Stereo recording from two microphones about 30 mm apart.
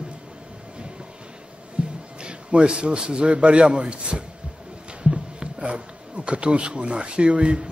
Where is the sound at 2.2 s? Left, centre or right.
Right.